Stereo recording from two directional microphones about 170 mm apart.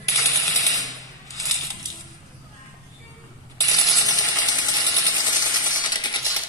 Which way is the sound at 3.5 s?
20° left (ahead or behind).